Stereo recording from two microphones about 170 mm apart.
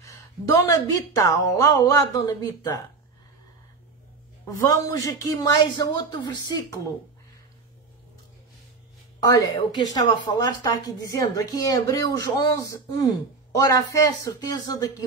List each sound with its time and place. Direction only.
0.0 s a woman's voice: 20° left (ahead or behind)
4.7 s a woman's voice: 20° left (ahead or behind)
9.9 s a woman's voice: 25° left (ahead or behind)